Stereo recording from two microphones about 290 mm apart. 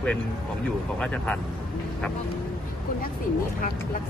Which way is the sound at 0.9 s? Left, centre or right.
Centre.